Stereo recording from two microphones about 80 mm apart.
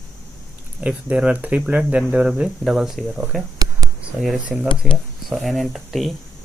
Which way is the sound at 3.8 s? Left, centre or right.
Right.